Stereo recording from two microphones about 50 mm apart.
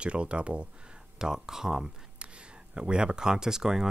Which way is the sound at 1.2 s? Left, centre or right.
Centre.